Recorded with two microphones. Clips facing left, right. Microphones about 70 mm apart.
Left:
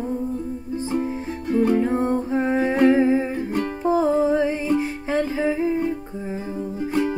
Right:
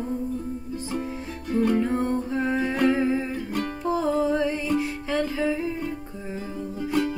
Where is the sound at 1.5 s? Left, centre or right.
Left.